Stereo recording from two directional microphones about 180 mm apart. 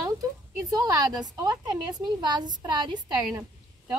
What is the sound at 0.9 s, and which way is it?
A woman's voice, 20° right (ahead or behind).